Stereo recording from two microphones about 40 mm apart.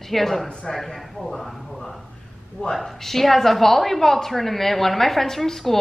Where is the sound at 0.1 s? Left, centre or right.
Centre.